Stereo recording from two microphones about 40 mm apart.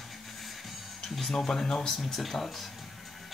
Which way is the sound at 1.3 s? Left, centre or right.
Centre.